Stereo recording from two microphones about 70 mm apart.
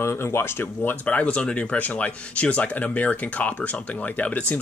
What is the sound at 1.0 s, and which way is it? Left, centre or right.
Speech, centre.